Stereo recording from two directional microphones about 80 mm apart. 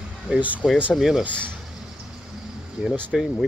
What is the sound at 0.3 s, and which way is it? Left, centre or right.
Speech, centre.